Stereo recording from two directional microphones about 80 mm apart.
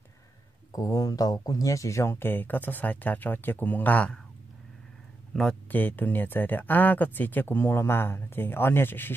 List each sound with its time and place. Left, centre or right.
0.7 s speech: left; by 4.2 s centre
5.3 s speech: centre
5.7 s speech: left